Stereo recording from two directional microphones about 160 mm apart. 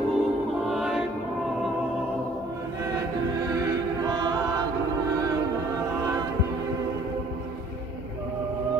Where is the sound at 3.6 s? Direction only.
25° right (ahead or behind).